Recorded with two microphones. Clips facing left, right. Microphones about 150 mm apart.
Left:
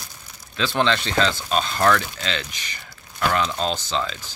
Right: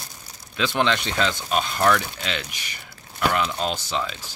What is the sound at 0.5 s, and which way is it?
Speech, 15° right (ahead or behind).